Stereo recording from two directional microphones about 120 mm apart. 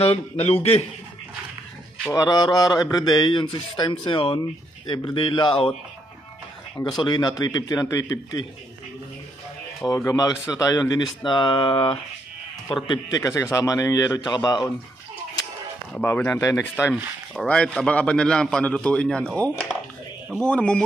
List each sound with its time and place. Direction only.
0.0 s a man's voice: 55° left (ahead or behind)
2.1 s a man's voice: 35° left (ahead or behind)
7.0 s a man's voice: 40° left (ahead or behind)
9.8 s a man's voice: 30° left (ahead or behind)
15.9 s a man's voice: 15° left (ahead or behind)
16.9 s a man's voice: 5° left (ahead or behind)